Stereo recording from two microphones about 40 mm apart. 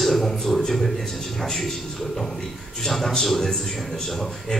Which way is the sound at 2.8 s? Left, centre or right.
Centre.